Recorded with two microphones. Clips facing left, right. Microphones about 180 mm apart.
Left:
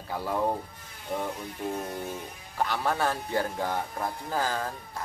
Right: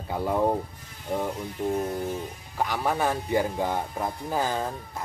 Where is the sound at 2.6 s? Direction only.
10° right (ahead or behind).